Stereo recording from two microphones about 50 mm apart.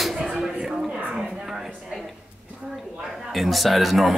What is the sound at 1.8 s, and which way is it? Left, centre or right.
Speech, centre.